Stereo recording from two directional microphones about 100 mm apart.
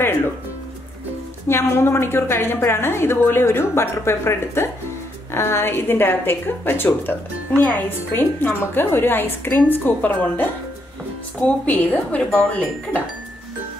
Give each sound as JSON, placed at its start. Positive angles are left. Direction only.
{"t": 1.5, "sound": "a woman's voice", "side_deg": 25}